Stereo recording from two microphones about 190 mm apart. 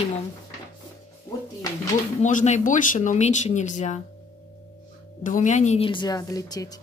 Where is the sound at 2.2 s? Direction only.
40° left (ahead or behind).